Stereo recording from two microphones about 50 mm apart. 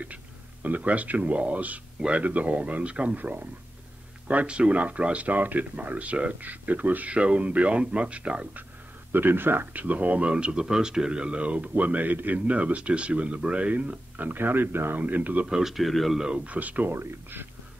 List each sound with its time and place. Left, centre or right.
0.0 s speech: right
9.1 s speech: right
9.8 s speech: right
10.3 s speech: centre; by 15.0 s right
15.0 s speech: right
15.4 s speech: centre
16.2 s speech: centre
16.4 s speech: right
16.9 s speech: right